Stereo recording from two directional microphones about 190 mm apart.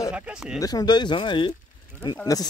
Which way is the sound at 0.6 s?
20° left (ahead or behind).